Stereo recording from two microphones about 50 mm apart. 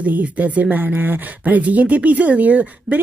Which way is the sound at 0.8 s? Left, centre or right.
Right.